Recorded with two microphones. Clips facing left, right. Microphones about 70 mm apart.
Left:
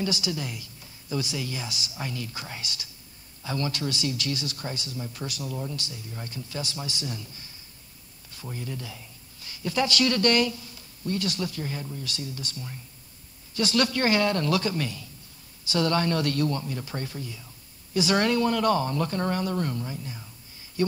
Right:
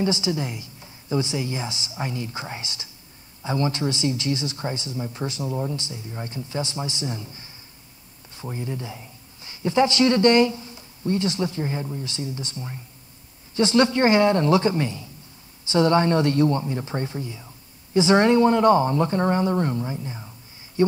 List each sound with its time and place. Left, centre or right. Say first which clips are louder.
0.0 s a man's voice: right 6 dB; right